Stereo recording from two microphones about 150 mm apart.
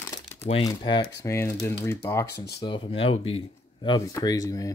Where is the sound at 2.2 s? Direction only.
90° left.